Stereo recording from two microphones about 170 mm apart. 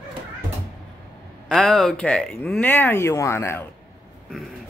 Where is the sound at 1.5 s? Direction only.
5° left (ahead or behind).